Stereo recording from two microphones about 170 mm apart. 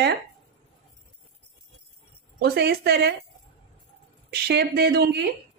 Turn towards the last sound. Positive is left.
turn(degrees=-70)  # may be behind; listen again after turning